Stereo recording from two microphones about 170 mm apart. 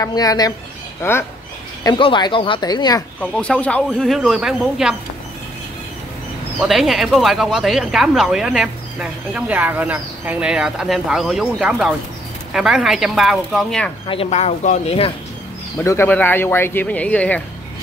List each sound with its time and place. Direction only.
0.0 s speech: 20° left (ahead or behind)
1.8 s speech: 25° left (ahead or behind)
3.2 s speech: 5° left (ahead or behind)
6.6 s speech: centre (ahead or behind)
14.0 s speech: 35° left (ahead or behind)
15.8 s speech: 15° left (ahead or behind)